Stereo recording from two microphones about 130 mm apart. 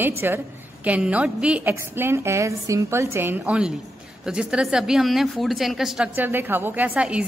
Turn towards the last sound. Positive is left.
turn(degrees=-10)  # may be behind; listen again after turning